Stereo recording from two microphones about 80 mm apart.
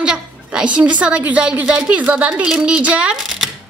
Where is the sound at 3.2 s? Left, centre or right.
Centre.